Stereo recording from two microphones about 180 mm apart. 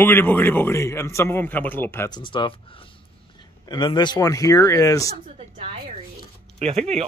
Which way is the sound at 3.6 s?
25° left (ahead or behind).